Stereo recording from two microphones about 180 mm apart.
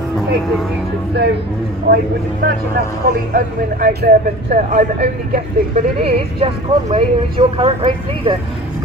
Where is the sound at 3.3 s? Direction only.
55° right (ahead or behind).